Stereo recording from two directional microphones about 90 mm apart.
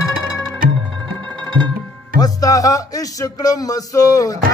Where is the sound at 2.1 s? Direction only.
45° left (ahead or behind).